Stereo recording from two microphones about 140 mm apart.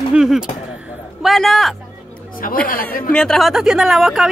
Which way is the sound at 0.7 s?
5° right (ahead or behind).